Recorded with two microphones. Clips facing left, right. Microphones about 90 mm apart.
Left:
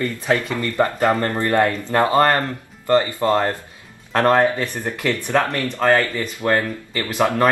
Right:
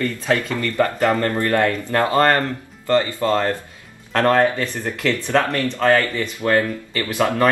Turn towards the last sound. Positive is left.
turn(degrees=20)  # may be behind; listen again after turning